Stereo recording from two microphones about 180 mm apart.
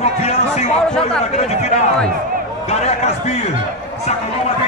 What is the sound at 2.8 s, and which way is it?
Speech, 35° left (ahead or behind).